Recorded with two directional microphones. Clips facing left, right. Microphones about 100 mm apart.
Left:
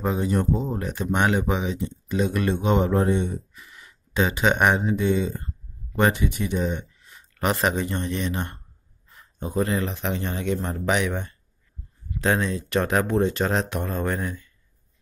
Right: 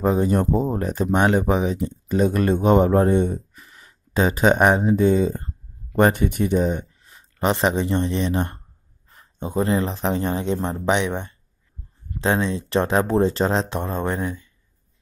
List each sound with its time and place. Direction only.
0.0 s speech: 35° right (ahead or behind); by 14.5 s 20° right (ahead or behind)